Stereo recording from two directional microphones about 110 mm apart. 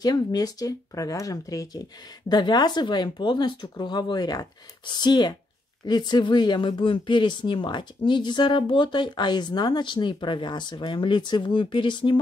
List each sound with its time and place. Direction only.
0.0 s speech: 35° left (ahead or behind)